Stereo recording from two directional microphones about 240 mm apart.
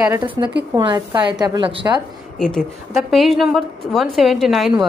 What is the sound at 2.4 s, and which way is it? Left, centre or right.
A woman's voice, centre.